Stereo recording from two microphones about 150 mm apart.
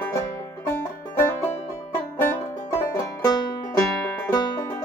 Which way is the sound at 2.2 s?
20° left (ahead or behind).